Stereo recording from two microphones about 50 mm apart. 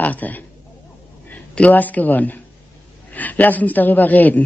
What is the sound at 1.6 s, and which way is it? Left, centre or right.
A man's voice, left.